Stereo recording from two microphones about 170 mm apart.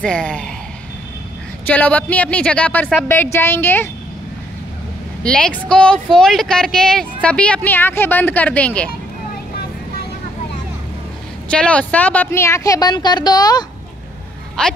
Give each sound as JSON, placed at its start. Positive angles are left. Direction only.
{"t": 0.0, "sound": "a woman's voice", "side_deg": 5}
{"t": 1.7, "sound": "a woman's voice", "side_deg": 10}
{"t": 5.2, "sound": "a woman's voice", "side_deg": 5}
{"t": 11.4, "sound": "a woman's voice", "side_deg": 5}
{"t": 14.6, "sound": "a woman's voice", "side_deg": 5}